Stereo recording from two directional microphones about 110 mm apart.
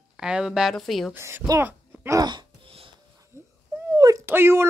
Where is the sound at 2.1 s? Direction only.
40° right (ahead or behind).